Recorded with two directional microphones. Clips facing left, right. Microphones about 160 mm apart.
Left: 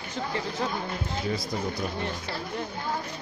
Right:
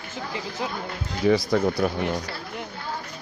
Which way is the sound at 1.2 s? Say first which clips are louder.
Right 13 dB; 85° right.